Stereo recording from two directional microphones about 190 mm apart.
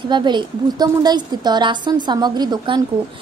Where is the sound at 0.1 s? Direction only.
25° right (ahead or behind).